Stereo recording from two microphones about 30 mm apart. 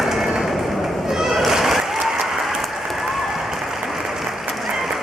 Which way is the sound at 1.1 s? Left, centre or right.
Centre.